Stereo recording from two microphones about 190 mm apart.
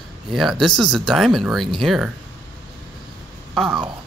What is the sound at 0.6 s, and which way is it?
Speech, centre (ahead or behind).